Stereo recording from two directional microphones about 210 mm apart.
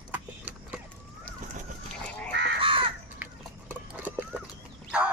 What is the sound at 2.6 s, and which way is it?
Crow, 25° right (ahead or behind).